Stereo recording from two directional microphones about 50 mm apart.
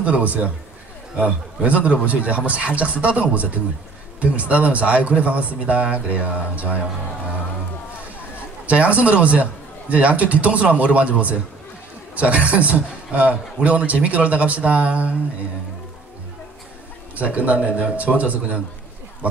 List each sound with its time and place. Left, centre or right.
0.0 s a man's voice: right
8.6 s a man's voice: right
17.1 s a man's voice: right